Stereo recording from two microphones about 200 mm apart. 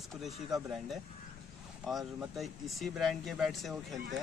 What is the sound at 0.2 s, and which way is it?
Speech, centre (ahead or behind).